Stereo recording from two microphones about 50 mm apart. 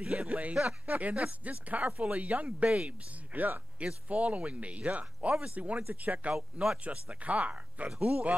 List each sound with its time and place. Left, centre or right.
0.0 s speech: centre
3.3 s speech: right
4.1 s speech: right
6.3 s speech: centre
6.8 s speech: right